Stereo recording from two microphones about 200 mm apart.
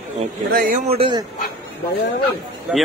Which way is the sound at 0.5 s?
40° right (ahead or behind).